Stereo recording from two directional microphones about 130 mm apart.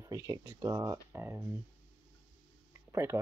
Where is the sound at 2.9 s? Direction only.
20° right (ahead or behind).